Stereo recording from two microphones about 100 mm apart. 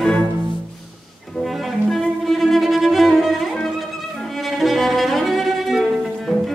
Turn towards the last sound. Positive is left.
turn(degrees=0)  # may be behind; listen again after turning